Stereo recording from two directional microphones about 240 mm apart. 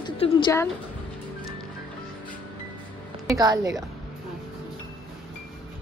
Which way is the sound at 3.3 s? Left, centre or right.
Centre.